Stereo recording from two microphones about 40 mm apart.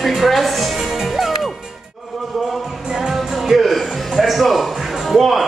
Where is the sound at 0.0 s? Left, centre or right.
Centre.